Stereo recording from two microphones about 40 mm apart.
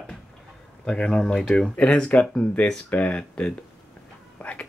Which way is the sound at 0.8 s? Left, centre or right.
Left.